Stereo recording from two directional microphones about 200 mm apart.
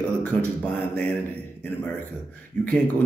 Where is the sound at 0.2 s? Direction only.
5° left (ahead or behind).